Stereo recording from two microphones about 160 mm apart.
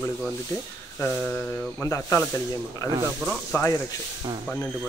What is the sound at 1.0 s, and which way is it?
Mantra, 10° left (ahead or behind).